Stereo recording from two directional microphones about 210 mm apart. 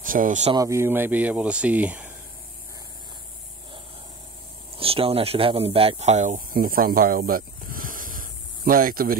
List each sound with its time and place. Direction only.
0.0 s speech: 40° right (ahead or behind)
0.6 s speech: 15° right (ahead or behind)
4.7 s speech: 25° right (ahead or behind); by 9.1 s 45° right (ahead or behind)